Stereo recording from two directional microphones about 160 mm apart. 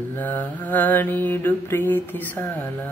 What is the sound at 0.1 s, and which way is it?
Mantra, 10° left (ahead or behind).